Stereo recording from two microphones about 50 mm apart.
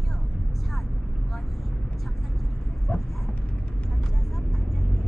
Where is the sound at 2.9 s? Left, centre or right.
Left.